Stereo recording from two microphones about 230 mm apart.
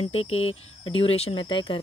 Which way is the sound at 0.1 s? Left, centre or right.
Left.